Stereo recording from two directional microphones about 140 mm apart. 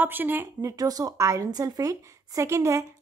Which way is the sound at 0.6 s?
25° right (ahead or behind).